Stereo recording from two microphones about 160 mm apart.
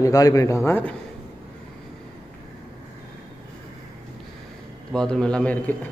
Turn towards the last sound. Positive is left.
turn(degrees=10)  # may be behind; listen again after turning